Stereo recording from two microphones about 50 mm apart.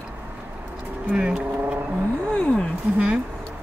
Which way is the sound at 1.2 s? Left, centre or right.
Right.